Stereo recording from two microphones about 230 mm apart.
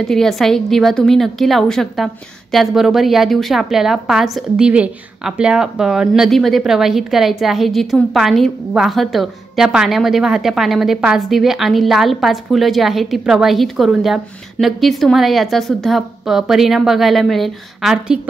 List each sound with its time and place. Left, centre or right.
0.0 s a woman's voice: centre